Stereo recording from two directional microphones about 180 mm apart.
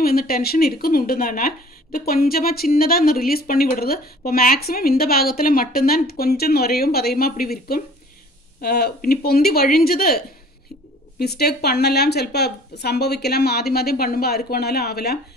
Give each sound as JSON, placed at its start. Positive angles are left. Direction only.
{"t": 0.0, "sound": "speech", "side_deg": 55}